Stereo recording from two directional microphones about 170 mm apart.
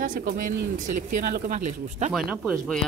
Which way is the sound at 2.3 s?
5° right (ahead or behind).